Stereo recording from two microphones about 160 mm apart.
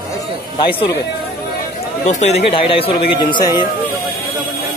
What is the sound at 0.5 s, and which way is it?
Speech, 35° left (ahead or behind).